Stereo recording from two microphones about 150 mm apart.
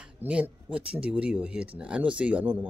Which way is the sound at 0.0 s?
10° right (ahead or behind).